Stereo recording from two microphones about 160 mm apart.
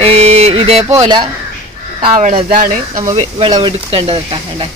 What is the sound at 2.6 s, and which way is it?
Speech, 55° right (ahead or behind).